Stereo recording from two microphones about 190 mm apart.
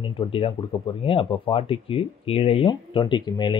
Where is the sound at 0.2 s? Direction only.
30° left (ahead or behind).